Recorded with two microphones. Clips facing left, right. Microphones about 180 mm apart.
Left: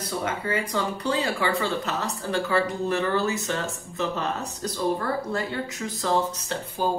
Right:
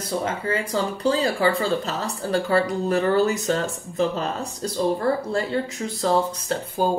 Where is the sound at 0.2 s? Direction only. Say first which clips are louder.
Right 2 dB; 30° right (ahead or behind).